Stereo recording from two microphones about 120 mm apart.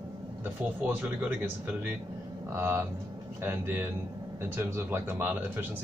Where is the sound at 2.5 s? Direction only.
20° right (ahead or behind).